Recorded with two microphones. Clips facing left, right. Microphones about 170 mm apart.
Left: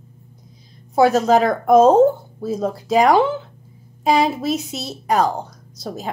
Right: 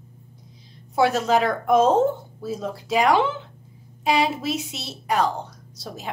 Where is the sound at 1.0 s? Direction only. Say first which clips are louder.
Left 5 dB; 40° left (ahead or behind).